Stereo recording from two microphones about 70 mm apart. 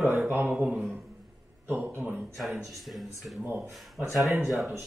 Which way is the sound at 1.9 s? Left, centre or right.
Right.